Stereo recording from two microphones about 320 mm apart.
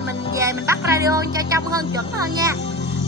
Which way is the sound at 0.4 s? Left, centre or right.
Centre.